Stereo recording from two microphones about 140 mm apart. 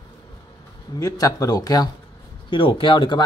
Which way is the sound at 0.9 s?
25° left (ahead or behind).